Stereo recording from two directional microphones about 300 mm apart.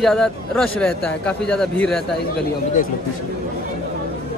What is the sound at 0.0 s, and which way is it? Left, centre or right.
A man's voice, centre.